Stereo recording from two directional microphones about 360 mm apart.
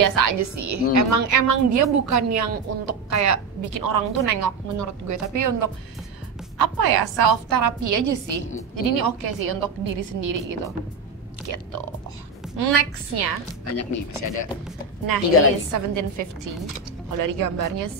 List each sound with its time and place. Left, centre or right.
0.0 s a woman's voice: right
6.6 s a woman's voice: right
8.7 s a woman's voice: right
13.7 s speech: left
15.1 s a woman's voice: right
15.7 s a woman's voice: right
17.3 s a woman's voice: right